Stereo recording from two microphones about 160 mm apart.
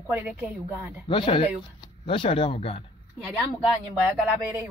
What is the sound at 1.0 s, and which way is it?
Speech, 30° left (ahead or behind).